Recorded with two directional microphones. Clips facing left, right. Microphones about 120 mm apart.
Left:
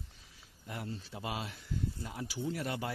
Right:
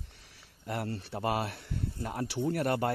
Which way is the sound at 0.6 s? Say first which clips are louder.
Right 7 dB; 70° right (ahead or behind).